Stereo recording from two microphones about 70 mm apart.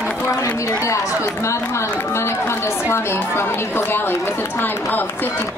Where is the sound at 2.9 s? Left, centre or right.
Left.